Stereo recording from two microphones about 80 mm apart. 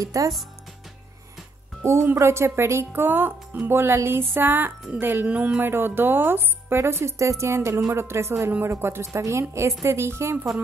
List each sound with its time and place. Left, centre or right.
0.0 s speech: right
1.8 s a woman's voice: right